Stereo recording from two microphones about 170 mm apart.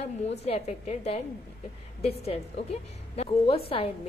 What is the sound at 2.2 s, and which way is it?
A woman's voice, 35° left (ahead or behind).